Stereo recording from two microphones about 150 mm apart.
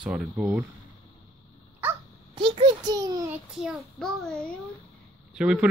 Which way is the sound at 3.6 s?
Centre (ahead or behind).